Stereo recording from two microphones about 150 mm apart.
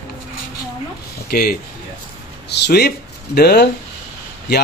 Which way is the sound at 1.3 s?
80° left.